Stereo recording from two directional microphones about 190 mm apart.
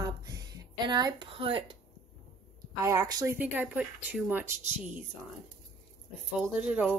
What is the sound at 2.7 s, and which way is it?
Speech, 15° right (ahead or behind).